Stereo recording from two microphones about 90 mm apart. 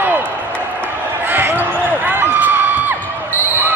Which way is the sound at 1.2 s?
20° right (ahead or behind).